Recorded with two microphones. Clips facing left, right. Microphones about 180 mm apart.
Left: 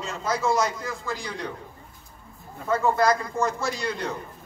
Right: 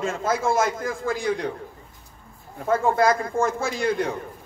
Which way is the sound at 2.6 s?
50° right (ahead or behind).